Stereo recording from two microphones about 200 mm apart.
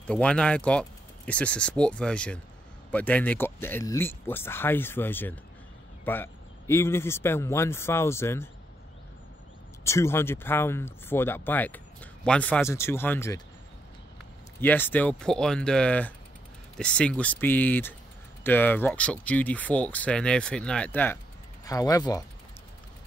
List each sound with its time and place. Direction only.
0.0 s speech: 5° left (ahead or behind)
9.8 s speech: 15° left (ahead or behind)
14.6 s speech: 10° left (ahead or behind)